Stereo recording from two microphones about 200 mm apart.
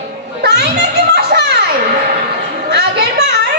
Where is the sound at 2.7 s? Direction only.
55° right (ahead or behind).